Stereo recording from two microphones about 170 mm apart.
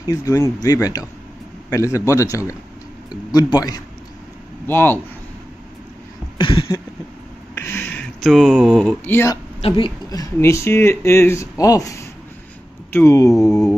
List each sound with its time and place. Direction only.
0.0 s speech: 20° left (ahead or behind)
6.3 s a sound: 30° left (ahead or behind)
7.6 s speech: 10° left (ahead or behind)
9.6 s speech: 30° left (ahead or behind)
10.4 s speech: 15° left (ahead or behind)
13.5 s music: 5° left (ahead or behind)